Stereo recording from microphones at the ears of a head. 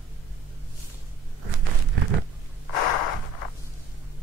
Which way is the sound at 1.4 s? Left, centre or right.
Right.